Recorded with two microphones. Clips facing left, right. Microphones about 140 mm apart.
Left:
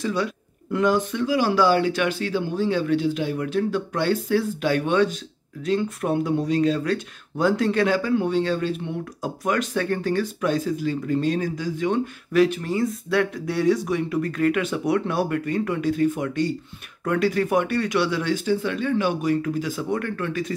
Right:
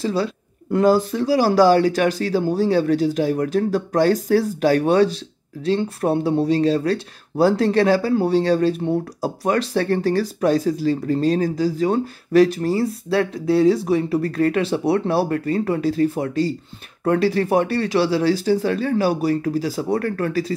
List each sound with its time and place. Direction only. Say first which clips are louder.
0.0 s speech: right 3 dB; 30° right (ahead or behind)